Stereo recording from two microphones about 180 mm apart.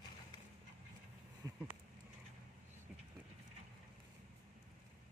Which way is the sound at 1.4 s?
20° right (ahead or behind).